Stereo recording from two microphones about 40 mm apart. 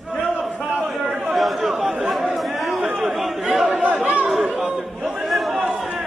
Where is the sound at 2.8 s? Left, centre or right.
Centre.